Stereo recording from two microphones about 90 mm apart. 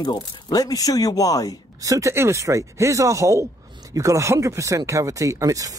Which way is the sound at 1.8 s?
35° right (ahead or behind).